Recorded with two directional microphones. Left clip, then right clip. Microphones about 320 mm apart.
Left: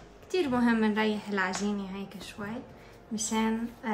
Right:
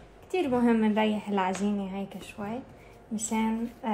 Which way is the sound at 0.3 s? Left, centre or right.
Centre.